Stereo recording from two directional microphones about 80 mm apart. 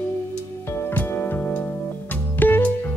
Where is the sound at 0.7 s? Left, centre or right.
Left.